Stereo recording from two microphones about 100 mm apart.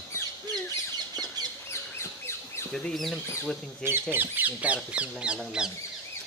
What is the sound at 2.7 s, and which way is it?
Speech, 5° left (ahead or behind).